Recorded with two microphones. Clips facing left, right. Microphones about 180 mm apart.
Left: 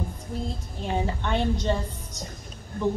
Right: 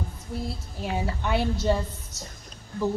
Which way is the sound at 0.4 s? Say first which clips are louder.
Right 1 dB; 5° right (ahead or behind).